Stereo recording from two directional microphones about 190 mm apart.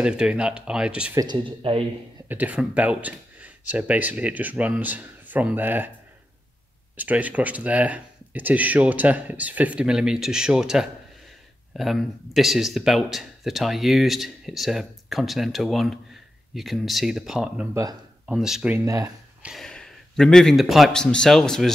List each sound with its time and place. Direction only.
0.0 s speech: 5° right (ahead or behind)
1.2 s speech: 25° right (ahead or behind)
2.2 s speech: 10° right (ahead or behind)
7.0 s speech: 10° right (ahead or behind)
18.9 s speech: 15° right (ahead or behind)
19.4 s speech: centre (ahead or behind)